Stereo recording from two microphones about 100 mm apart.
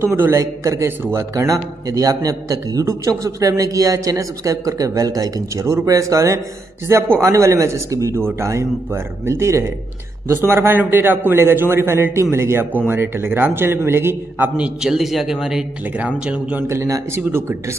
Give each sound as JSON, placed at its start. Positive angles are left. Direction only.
{"t": 0.0, "sound": "a man's voice", "side_deg": -20}
{"t": 14.6, "sound": "speech", "side_deg": -5}
{"t": 16.6, "sound": "a man's voice", "side_deg": -30}